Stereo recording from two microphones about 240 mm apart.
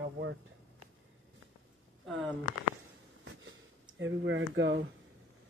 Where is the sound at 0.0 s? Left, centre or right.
Right.